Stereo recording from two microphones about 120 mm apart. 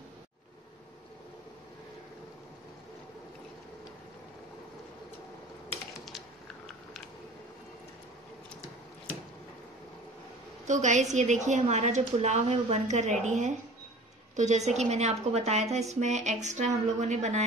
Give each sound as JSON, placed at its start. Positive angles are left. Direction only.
{"t": 6.0, "sound": "typing", "side_deg": 0}
{"t": 10.7, "sound": "a woman's voice", "side_deg": -90}